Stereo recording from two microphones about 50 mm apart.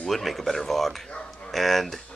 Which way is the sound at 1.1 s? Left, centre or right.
Left.